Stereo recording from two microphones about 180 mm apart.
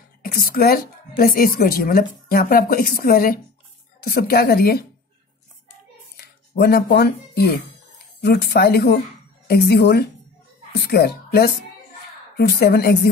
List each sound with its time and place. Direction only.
0.2 s a woman's voice: 55° left (ahead or behind)
6.1 s a sound: 65° left (ahead or behind)
8.2 s a woman's voice: 65° left (ahead or behind)